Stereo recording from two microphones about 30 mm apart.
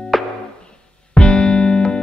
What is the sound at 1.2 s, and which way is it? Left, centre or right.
Music, left.